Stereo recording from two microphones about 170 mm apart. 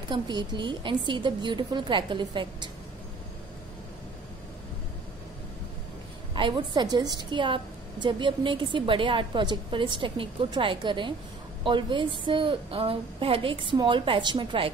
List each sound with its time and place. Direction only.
0.1 s a woman's voice: 25° right (ahead or behind)
6.3 s a woman's voice: 30° right (ahead or behind)